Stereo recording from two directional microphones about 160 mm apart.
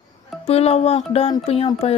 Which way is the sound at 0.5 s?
40° left (ahead or behind).